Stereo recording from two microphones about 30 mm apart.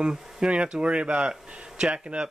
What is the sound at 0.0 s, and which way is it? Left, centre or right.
Speech, right.